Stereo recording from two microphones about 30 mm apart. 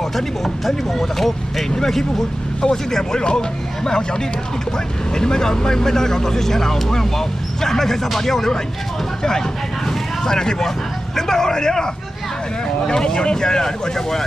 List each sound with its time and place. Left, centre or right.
0.1 s speech: centre
9.8 s vehicle: centre
11.1 s speech: centre